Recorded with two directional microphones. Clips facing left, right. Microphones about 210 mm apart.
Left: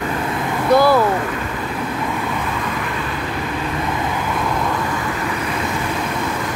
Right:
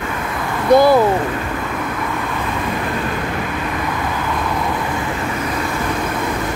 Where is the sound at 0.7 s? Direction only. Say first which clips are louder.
Right 3 dB; 20° right (ahead or behind).